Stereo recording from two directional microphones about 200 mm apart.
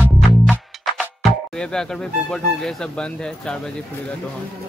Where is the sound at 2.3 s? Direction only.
5° left (ahead or behind).